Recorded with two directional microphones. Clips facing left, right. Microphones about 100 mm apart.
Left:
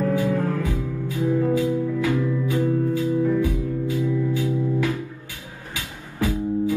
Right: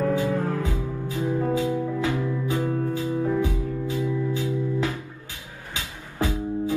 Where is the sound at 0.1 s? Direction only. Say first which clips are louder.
Left 2 dB; 20° right (ahead or behind).